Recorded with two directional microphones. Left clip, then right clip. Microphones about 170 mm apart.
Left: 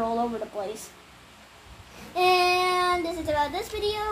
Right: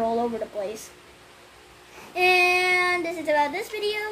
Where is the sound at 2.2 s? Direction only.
20° right (ahead or behind).